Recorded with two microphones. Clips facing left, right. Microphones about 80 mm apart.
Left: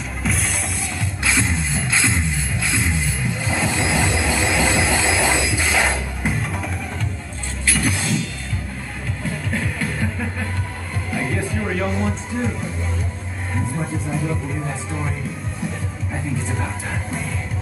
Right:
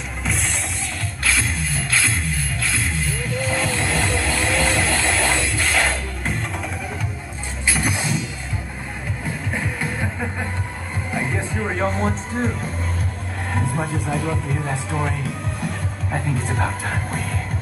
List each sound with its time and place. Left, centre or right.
0.2 s music: centre
1.2 s music: centre
7.6 s music: centre
12.3 s music: right
13.7 s music: right